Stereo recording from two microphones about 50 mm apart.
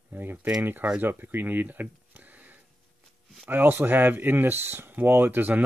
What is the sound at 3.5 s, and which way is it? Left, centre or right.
Speech, right.